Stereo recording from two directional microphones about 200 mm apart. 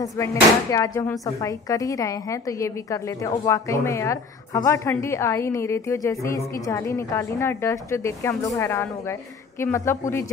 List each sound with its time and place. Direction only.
0.0 s a woman's voice: 15° left (ahead or behind)